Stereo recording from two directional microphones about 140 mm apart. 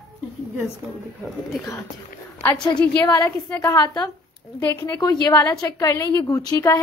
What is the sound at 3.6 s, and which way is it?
A woman's voice, 25° left (ahead or behind).